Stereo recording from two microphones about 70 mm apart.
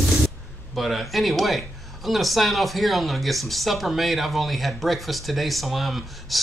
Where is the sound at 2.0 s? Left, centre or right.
Centre.